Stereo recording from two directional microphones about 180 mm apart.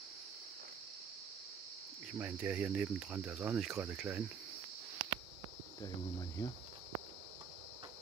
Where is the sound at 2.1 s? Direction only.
10° right (ahead or behind).